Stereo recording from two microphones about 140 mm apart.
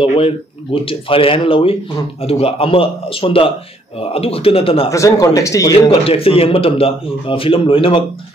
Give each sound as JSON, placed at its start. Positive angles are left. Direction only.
{"t": 0.8, "sound": "a man's voice", "side_deg": 40}
{"t": 4.9, "sound": "speech", "side_deg": 25}
{"t": 6.0, "sound": "speech", "side_deg": 45}